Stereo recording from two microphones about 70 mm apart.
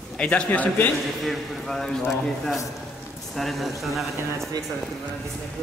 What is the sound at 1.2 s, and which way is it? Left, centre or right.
A man's voice, centre.